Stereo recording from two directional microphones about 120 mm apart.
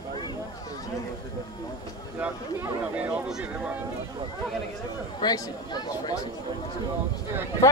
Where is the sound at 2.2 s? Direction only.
10° right (ahead or behind).